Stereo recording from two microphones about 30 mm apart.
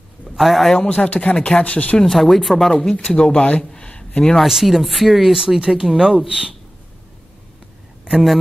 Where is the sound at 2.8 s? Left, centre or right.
Centre.